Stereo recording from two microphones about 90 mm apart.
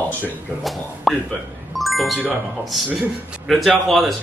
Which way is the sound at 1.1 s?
Centre (ahead or behind).